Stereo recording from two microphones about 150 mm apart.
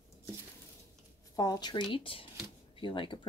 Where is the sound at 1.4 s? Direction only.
25° left (ahead or behind).